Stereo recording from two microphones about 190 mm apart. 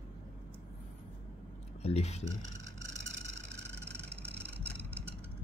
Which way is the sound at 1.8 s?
35° left (ahead or behind).